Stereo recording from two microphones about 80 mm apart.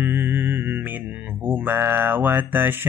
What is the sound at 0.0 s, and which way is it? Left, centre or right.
Mantra, right.